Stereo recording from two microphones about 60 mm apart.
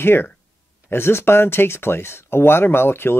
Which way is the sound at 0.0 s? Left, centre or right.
Left.